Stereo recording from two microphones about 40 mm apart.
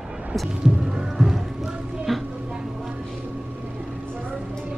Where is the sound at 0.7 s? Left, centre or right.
Centre.